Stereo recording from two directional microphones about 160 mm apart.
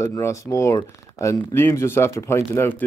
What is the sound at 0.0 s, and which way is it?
Speech, 20° left (ahead or behind).